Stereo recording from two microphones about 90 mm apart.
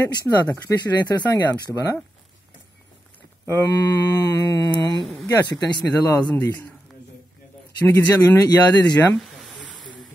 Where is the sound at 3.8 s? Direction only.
45° left (ahead or behind).